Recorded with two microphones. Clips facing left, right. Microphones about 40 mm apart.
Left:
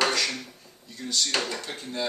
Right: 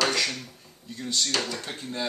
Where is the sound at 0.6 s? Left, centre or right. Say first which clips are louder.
Right 2 dB; centre.